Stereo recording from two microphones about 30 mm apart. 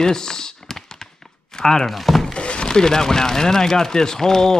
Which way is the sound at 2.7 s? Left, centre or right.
Left.